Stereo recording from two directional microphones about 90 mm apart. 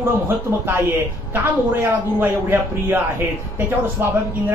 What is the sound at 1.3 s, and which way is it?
Speech, 20° right (ahead or behind).